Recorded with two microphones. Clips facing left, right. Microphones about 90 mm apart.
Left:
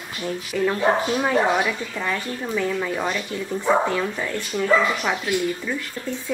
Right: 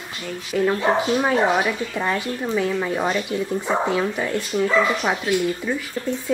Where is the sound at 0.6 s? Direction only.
10° right (ahead or behind).